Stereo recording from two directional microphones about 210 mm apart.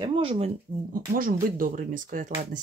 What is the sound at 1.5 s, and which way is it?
Speech, 40° right (ahead or behind).